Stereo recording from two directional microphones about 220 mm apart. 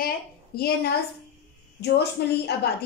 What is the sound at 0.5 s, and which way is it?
Speech, 45° left (ahead or behind).